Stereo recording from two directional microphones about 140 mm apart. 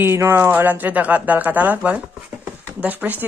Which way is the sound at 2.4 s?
10° right (ahead or behind).